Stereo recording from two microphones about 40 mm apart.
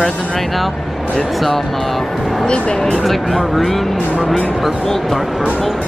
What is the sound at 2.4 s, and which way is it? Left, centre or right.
Speech, left.